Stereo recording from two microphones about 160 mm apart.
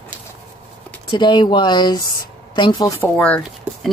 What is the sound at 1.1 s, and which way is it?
Speech, 30° left (ahead or behind).